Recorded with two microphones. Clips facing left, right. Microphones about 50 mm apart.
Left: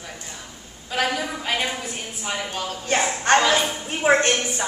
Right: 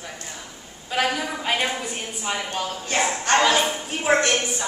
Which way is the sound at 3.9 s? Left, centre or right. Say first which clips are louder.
Left 3 dB; left.